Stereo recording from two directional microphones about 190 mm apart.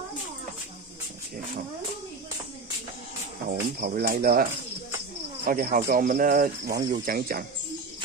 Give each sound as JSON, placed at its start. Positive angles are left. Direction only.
{"t": 3.4, "sound": "speech", "side_deg": -50}